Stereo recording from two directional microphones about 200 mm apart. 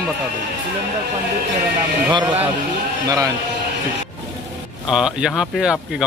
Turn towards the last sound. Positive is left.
turn(degrees=-5)  # may be behind; listen again after turning